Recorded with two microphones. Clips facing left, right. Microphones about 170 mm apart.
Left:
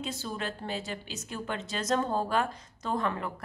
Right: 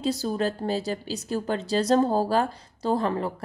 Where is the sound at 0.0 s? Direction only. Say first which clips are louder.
Right 10 dB; 40° right (ahead or behind).